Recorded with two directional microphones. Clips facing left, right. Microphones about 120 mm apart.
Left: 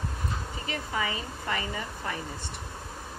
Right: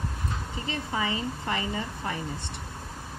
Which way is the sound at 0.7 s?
25° right (ahead or behind).